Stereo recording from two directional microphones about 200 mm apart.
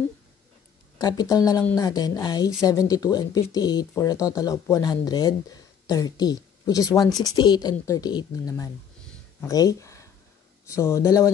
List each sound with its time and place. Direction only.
0.9 s speech: 20° left (ahead or behind)